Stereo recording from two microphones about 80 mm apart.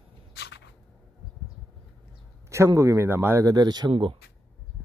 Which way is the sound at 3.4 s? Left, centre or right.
Right.